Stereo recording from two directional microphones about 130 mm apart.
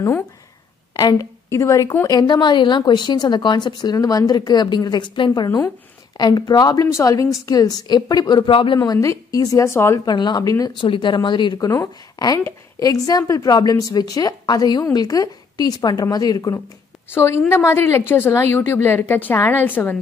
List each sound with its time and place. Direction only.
0.9 s a woman's voice: 30° left (ahead or behind)
8.7 s a woman's voice: 30° left (ahead or behind)
10.0 s a woman's voice: 35° left (ahead or behind); by 20.0 s 15° left (ahead or behind)